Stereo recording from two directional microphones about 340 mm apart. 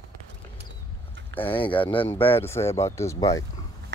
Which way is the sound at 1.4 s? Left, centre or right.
Centre.